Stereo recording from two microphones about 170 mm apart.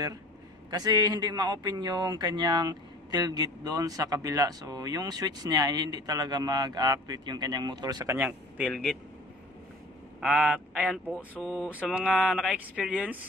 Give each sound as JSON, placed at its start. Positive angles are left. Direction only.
{"t": 0.7, "sound": "a man's voice", "side_deg": -25}
{"t": 8.6, "sound": "speech", "side_deg": 0}
{"t": 10.2, "sound": "speech", "side_deg": 0}
{"t": 11.4, "sound": "mantra", "side_deg": 5}
{"t": 11.7, "sound": "speech", "side_deg": -5}